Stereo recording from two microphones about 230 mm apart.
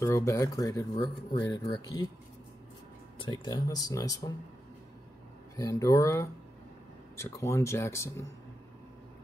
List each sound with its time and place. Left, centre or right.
0.0 s speech: centre
3.2 s speech: centre
5.6 s speech: centre